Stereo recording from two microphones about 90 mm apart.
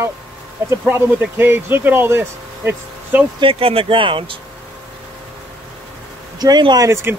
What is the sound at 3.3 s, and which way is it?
Speech, 90° right.